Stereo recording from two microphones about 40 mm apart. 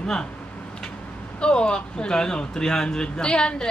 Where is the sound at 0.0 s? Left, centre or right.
Centre.